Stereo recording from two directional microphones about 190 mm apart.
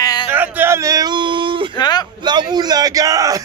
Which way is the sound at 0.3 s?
10° right (ahead or behind).